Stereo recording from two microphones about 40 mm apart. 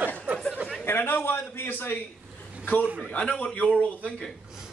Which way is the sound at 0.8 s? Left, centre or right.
Left.